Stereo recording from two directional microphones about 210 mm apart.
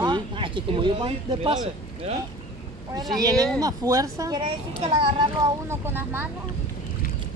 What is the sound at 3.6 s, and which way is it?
Speech, 15° right (ahead or behind).